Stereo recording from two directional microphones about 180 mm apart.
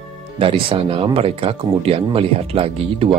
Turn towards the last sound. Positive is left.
turn(degrees=-30)  # may be behind; listen again after turning